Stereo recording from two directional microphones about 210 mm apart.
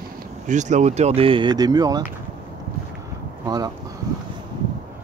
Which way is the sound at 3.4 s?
20° right (ahead or behind).